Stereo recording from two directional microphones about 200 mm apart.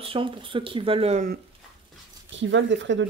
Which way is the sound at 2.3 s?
65° right (ahead or behind).